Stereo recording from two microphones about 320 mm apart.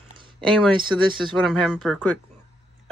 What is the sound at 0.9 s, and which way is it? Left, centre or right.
Speech, centre.